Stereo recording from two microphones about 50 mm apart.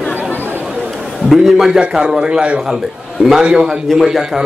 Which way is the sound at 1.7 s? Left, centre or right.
Centre.